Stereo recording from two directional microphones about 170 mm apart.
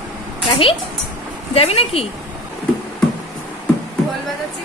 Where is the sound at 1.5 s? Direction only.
35° left (ahead or behind).